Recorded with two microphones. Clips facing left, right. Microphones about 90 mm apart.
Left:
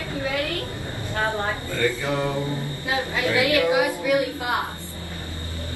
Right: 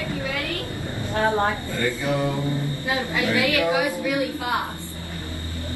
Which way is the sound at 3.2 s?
20° left (ahead or behind).